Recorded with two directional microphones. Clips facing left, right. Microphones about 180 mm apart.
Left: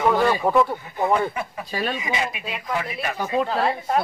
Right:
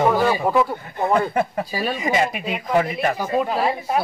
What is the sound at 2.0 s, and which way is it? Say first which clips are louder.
Speech: right 6 dB; 50° right (ahead or behind).